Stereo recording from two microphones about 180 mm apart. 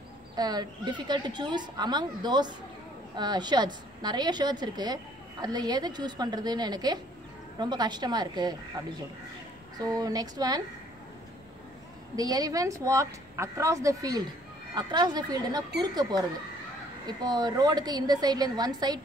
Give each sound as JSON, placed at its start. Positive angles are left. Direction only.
{"t": 0.4, "sound": "a woman's voice", "side_deg": -20}
{"t": 9.8, "sound": "a woman's voice", "side_deg": -20}
{"t": 12.2, "sound": "a woman's voice", "side_deg": -20}